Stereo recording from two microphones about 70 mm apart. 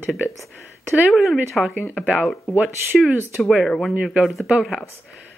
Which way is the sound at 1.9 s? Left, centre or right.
Centre.